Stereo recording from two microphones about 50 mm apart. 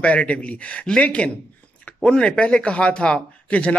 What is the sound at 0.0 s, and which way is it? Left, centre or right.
Speech, left.